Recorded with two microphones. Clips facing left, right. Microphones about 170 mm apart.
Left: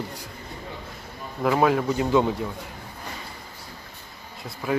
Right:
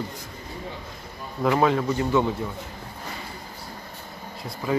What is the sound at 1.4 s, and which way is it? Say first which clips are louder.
Speech: even; 5° left (ahead or behind).